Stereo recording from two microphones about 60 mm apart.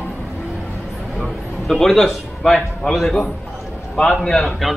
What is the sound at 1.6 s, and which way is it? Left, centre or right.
A man's voice, centre.